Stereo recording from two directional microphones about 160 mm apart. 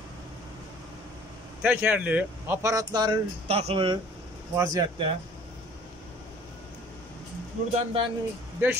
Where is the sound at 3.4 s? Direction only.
40° right (ahead or behind).